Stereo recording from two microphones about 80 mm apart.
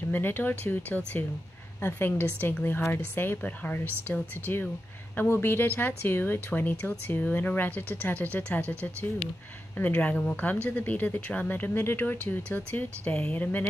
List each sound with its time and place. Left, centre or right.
0.1 s speech: left